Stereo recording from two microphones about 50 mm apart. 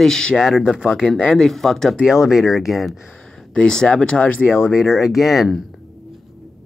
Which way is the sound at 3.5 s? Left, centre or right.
Centre.